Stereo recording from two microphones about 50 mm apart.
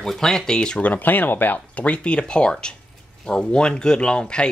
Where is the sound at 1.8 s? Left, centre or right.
Left.